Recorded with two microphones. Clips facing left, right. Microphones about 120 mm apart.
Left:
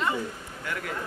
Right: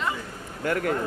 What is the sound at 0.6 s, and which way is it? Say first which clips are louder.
Speech: right 9 dB; 50° right (ahead or behind).